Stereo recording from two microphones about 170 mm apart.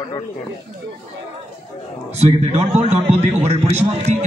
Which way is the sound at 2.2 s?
40° right (ahead or behind).